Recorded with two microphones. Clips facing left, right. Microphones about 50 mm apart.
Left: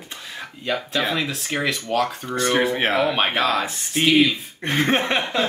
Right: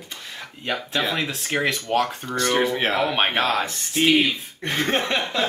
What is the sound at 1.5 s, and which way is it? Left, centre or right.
Speech, centre.